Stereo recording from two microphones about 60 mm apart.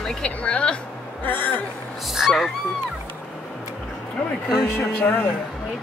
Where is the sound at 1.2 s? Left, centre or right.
Left.